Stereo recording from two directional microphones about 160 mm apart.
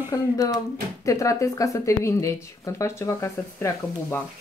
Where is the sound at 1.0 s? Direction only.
20° left (ahead or behind).